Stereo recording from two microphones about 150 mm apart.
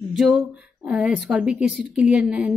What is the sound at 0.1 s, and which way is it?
Speech, centre (ahead or behind).